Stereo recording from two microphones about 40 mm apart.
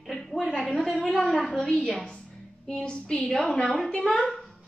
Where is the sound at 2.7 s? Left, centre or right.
Centre.